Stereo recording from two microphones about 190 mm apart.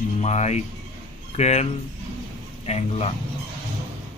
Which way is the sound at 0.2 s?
35° left (ahead or behind).